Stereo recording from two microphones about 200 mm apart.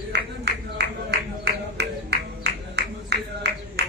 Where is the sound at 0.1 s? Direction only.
55° right (ahead or behind).